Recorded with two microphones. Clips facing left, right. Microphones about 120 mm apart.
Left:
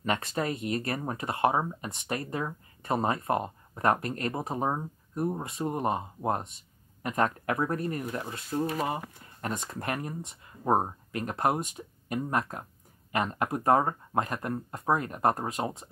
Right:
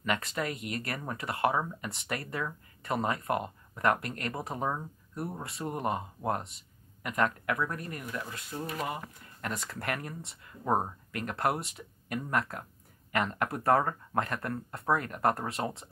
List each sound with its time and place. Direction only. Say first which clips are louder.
0.0 s speech: left 2 dB; 30° left (ahead or behind)